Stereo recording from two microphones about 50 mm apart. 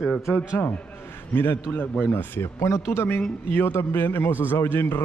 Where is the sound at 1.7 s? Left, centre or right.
Left.